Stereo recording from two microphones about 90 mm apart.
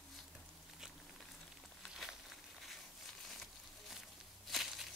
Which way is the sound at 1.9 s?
Centre (ahead or behind).